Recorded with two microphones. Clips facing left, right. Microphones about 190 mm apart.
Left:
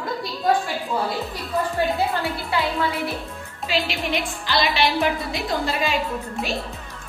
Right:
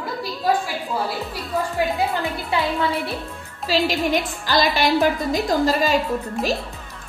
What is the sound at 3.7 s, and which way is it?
A woman's voice, 45° right (ahead or behind).